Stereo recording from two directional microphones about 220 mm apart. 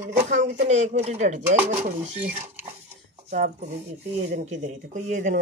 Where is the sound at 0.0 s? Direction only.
35° right (ahead or behind).